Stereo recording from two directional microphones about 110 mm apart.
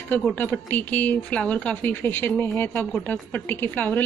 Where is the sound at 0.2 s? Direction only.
15° left (ahead or behind).